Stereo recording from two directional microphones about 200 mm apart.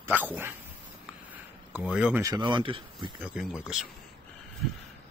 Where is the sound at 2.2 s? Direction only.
20° right (ahead or behind).